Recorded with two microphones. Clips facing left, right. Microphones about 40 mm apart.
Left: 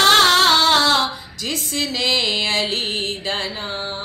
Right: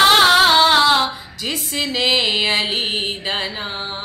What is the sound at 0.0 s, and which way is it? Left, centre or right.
Female singing, centre.